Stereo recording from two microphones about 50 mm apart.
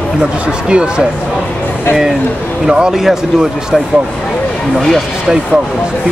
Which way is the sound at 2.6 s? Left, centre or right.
Centre.